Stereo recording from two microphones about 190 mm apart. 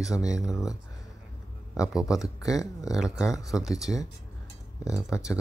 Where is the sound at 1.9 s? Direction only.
5° right (ahead or behind).